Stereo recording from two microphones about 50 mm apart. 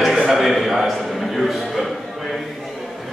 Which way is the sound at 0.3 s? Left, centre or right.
Centre.